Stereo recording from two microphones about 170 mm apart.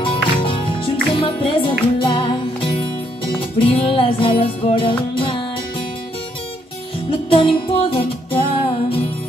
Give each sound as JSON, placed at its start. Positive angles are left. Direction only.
{"t": 0.0, "sound": "music", "side_deg": 30}
{"t": 7.1, "sound": "music", "side_deg": 30}